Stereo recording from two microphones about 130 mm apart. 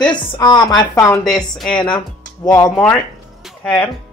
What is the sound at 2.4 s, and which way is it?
Speech, 30° left (ahead or behind).